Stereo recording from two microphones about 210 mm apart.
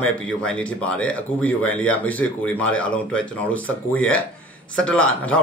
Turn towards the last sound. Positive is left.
turn(degrees=5)  # may be behind; listen again after turning